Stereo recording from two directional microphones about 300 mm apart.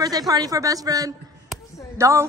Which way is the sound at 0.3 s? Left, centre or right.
Centre.